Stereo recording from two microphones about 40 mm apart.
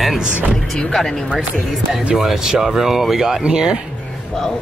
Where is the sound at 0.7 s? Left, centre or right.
Centre.